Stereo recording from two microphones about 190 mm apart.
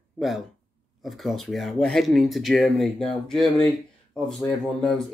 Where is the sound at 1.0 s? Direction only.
Centre (ahead or behind).